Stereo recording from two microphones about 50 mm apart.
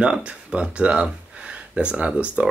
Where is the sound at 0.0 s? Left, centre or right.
Centre.